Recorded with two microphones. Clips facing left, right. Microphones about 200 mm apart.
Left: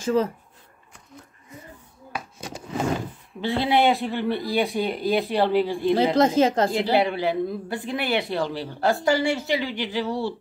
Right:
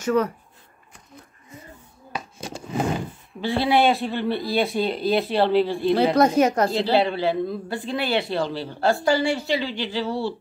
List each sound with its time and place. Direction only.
0.0 s speech: 30° left (ahead or behind)
3.3 s speech: 20° left (ahead or behind)
6.7 s a woman's voice: 15° left (ahead or behind)